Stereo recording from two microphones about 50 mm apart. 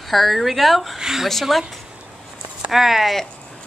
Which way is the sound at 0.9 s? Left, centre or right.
Centre.